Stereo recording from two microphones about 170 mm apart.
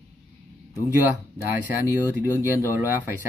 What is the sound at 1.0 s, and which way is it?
Speech, 15° right (ahead or behind).